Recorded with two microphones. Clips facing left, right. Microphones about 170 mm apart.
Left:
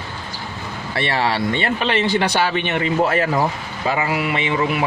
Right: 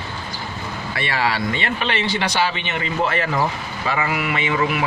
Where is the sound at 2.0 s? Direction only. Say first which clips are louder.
Left 3 dB; 50° left (ahead or behind).